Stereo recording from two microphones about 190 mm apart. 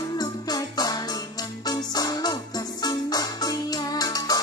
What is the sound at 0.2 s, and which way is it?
Music, 20° left (ahead or behind).